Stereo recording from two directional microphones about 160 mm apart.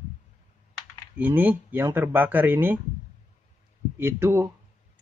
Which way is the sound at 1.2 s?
10° right (ahead or behind).